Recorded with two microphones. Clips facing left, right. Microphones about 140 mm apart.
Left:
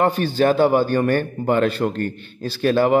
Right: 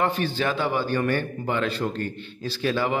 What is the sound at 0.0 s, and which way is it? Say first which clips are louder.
A man's voice: left 7 dB; 45° left (ahead or behind).